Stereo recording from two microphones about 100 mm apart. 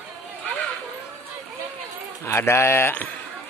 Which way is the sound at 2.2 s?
25° left (ahead or behind).